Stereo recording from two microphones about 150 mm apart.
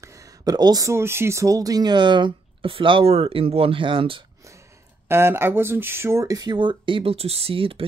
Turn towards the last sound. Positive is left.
turn(degrees=-40)  # may be behind; listen again after turning